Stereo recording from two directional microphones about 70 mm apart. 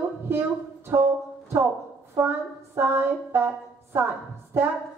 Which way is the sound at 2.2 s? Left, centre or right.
Right.